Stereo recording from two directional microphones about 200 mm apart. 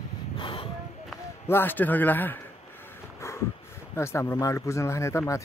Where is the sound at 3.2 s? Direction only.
15° left (ahead or behind).